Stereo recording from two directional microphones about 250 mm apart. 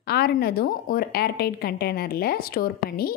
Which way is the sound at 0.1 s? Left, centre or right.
Left.